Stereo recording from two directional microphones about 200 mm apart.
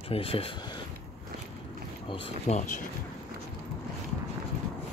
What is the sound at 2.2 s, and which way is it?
Speech, 30° left (ahead or behind).